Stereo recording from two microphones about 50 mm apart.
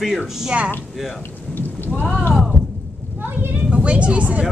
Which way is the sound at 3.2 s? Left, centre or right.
Right.